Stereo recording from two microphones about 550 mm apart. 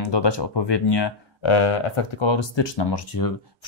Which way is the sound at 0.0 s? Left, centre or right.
Left.